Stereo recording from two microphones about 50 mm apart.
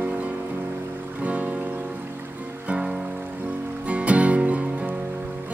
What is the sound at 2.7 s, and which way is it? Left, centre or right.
Music, centre.